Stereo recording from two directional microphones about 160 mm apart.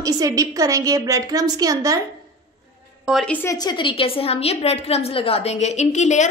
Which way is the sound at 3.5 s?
25° left (ahead or behind).